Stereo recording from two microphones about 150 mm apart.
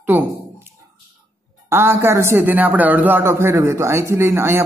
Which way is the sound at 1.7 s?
15° right (ahead or behind).